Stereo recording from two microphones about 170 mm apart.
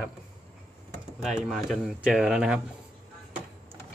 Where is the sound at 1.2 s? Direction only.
Centre (ahead or behind).